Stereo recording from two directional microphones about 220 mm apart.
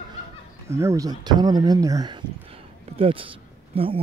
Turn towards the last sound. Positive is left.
turn(degrees=-25)  # may be behind; listen again after turning